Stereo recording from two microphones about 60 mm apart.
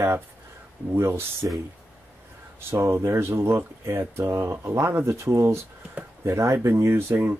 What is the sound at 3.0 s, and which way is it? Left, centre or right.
Speech, right.